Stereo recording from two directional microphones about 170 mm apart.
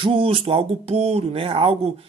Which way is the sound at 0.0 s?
30° right (ahead or behind).